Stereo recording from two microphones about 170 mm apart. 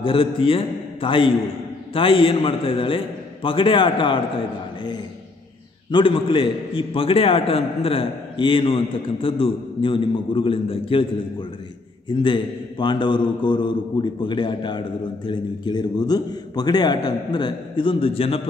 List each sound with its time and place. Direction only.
0.0 s a man's voice: 30° left (ahead or behind)
5.9 s a man's voice: 30° left (ahead or behind)
12.2 s a man's voice: 25° left (ahead or behind)